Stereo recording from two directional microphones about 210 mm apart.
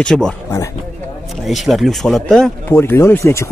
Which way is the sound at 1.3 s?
Centre (ahead or behind).